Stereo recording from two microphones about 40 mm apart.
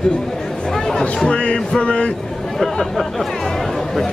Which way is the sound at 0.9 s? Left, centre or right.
Left.